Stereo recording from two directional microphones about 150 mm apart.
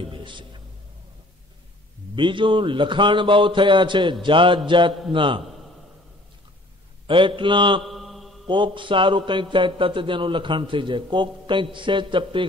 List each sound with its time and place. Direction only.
0.1 s speech: 30° right (ahead or behind)
2.1 s a man's voice: 35° right (ahead or behind)
7.1 s a man's voice: 35° right (ahead or behind)
7.9 s mantra: centre (ahead or behind)
8.5 s a man's voice: 30° right (ahead or behind)